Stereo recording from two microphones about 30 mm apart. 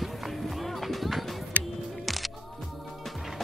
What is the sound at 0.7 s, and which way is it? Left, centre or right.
Music, centre.